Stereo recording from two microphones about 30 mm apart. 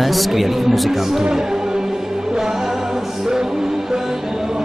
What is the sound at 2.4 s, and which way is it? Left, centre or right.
Music, centre.